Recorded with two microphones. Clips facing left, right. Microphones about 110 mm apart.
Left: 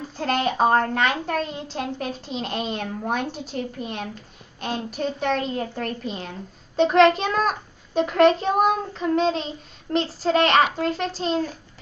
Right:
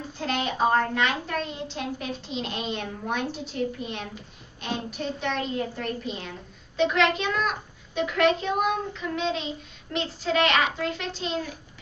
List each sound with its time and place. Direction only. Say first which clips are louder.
0.2 s a child's voice: left 4 dB; 45° left (ahead or behind)